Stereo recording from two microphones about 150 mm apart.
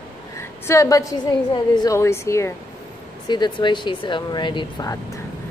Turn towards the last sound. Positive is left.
turn(degrees=30)  # may be behind; listen again after turning